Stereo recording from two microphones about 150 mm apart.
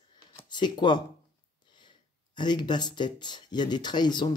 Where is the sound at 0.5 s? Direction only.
30° left (ahead or behind).